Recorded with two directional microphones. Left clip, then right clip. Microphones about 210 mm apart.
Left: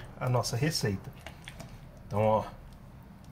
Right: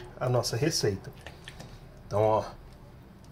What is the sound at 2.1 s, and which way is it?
Speech, 15° right (ahead or behind).